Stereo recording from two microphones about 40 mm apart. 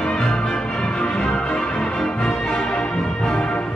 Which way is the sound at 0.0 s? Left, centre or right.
Left.